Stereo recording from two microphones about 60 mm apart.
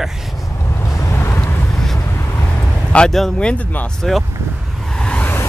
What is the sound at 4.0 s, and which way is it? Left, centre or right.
Speech, centre.